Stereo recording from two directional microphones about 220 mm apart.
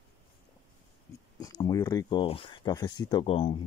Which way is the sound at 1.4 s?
15° left (ahead or behind).